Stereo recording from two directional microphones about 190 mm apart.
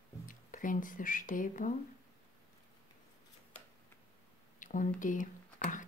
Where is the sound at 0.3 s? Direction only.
45° left (ahead or behind).